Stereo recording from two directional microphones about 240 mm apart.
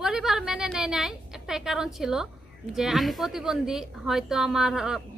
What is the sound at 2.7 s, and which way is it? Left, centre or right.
Speech, centre.